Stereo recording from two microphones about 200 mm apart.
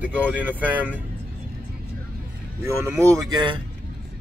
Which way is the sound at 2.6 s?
15° right (ahead or behind).